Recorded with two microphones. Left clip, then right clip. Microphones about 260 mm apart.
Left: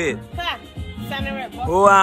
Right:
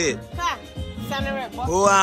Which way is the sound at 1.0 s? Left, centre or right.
Centre.